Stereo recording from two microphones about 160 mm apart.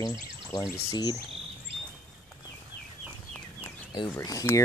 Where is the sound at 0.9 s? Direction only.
25° left (ahead or behind).